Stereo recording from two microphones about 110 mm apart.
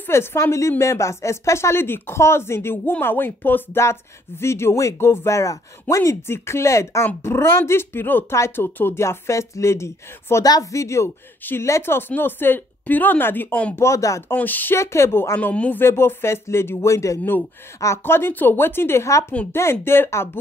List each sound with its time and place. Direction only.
0.0 s a woman's voice: 20° left (ahead or behind)
13.7 s a woman's voice: 25° left (ahead or behind)
14.3 s a woman's voice: 15° left (ahead or behind)